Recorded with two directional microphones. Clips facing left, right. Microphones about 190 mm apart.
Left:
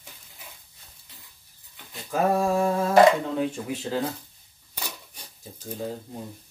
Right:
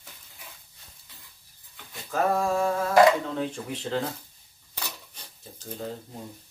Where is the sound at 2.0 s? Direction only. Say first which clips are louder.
Left 2 dB; 15° left (ahead or behind).